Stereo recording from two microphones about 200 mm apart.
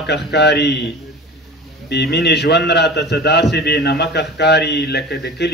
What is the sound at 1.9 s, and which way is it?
A man's voice, 55° left (ahead or behind).